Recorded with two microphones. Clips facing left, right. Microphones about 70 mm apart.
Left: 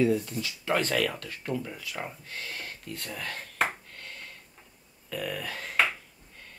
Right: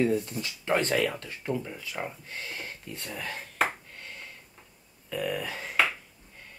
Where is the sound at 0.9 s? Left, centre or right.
Centre.